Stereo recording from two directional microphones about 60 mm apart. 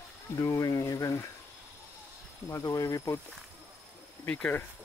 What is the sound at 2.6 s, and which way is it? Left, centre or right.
Speech, left.